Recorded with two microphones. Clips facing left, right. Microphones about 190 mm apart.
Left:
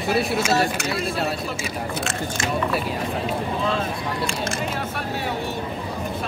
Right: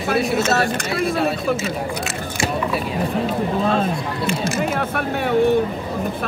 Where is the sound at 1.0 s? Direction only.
55° right (ahead or behind).